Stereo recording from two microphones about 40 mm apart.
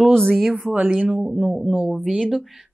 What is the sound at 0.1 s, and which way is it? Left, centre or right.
Speech, centre.